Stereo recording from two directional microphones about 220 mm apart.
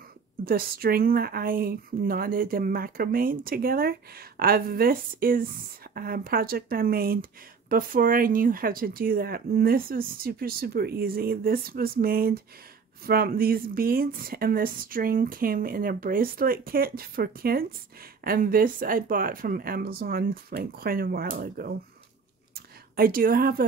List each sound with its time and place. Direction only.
0.5 s speech: 45° right (ahead or behind)
22.9 s speech: 40° right (ahead or behind)